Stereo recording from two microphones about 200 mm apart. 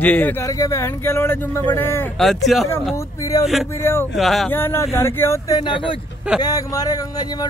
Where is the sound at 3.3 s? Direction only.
20° left (ahead or behind).